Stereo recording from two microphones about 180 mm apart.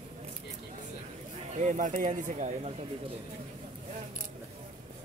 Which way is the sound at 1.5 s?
40° right (ahead or behind).